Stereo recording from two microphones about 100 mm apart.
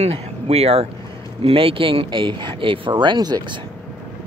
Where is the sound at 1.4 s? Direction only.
70° right (ahead or behind); by 3.4 s 45° right (ahead or behind).